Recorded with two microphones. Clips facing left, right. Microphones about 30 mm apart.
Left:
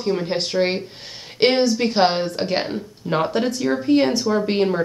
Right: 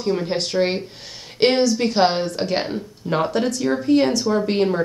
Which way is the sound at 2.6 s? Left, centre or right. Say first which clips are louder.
Even; centre.